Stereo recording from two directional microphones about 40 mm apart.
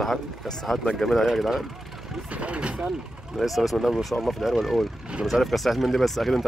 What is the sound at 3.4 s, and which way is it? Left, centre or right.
Speech, centre.